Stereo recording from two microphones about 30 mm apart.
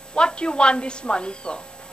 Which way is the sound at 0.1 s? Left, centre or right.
Left.